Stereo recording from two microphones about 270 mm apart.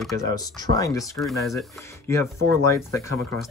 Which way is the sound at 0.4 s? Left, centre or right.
Centre.